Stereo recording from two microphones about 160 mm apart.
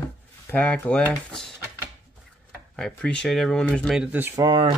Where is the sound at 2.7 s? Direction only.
5° left (ahead or behind).